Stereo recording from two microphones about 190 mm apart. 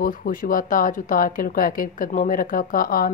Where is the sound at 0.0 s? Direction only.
45° left (ahead or behind).